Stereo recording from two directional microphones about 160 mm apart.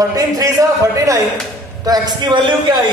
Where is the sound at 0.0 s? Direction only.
20° right (ahead or behind).